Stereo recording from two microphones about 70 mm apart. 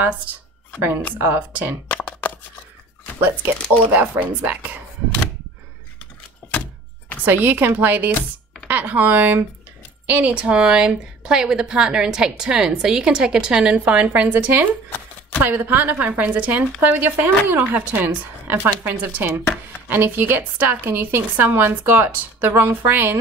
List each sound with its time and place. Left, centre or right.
1.1 s a woman's voice: right
1.9 s shuffling cards: left
3.2 s a woman's voice: right
3.5 s speech: centre
3.9 s a woman's voice: right
6.4 s door: left
7.2 s a woman's voice: right
10.3 s a woman's voice: centre